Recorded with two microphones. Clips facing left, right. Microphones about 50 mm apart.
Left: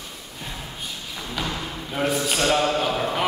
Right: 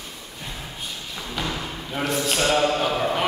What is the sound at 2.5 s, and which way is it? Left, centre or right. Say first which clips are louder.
Speech: right 1 dB; centre.